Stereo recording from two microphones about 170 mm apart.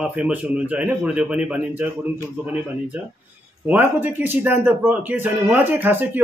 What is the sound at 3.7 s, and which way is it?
Speech, 10° right (ahead or behind).